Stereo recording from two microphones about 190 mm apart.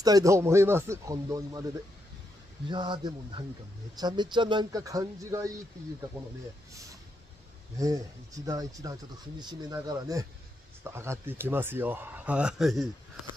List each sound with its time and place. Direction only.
0.0 s speech: 20° right (ahead or behind)
2.7 s speech: 25° right (ahead or behind)
8.5 s speech: 20° right (ahead or behind); by 12.8 s centre (ahead or behind)